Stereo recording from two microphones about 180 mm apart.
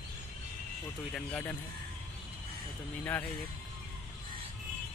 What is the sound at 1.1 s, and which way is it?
Speech, 10° left (ahead or behind).